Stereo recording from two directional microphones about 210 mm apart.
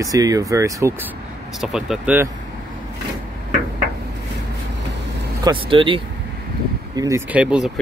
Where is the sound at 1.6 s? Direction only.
Centre (ahead or behind).